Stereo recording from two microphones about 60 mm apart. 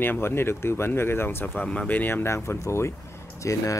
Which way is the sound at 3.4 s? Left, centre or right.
Left.